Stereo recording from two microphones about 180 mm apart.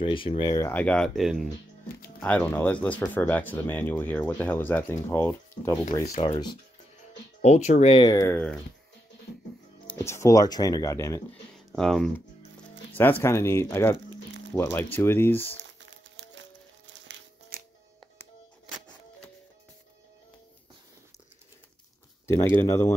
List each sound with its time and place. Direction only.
0.0 s speech: 30° left (ahead or behind)
0.7 s speech: 10° left (ahead or behind)
6.1 s speech: 25° left (ahead or behind)
7.4 s speech: 40° left (ahead or behind); by 8.5 s 10° left (ahead or behind)
9.8 s speech: 15° left (ahead or behind)
11.5 s a sound: centre (ahead or behind)
12.9 s speech: 10° left (ahead or behind)
15.8 s music: 90° right
22.2 s speech: 15° left (ahead or behind)